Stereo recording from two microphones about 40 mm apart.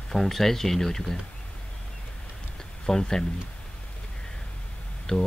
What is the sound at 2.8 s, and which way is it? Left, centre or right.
Speech, centre.